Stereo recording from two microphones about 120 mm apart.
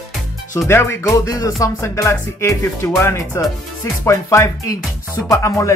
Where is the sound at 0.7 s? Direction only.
20° left (ahead or behind).